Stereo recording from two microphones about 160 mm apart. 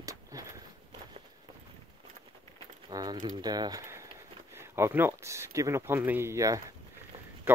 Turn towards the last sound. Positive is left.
turn(degrees=-15)  # may be behind; listen again after turning